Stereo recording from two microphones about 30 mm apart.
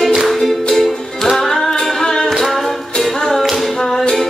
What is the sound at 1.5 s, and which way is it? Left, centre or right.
Singing, centre.